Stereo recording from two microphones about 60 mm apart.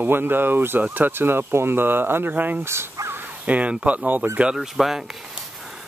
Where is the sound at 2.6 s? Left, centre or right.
Right.